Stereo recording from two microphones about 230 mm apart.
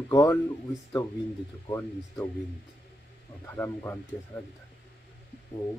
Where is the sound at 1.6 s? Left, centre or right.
Centre.